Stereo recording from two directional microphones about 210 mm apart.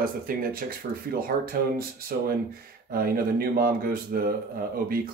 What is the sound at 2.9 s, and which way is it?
Speech, 45° right (ahead or behind).